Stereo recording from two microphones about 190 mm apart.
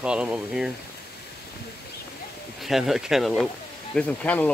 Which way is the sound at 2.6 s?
Centre (ahead or behind).